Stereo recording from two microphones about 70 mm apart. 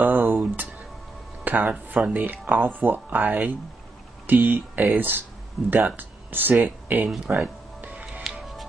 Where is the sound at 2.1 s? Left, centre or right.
Right.